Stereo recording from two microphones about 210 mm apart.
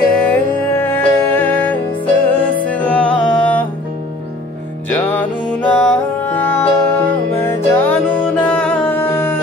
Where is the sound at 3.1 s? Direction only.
20° left (ahead or behind).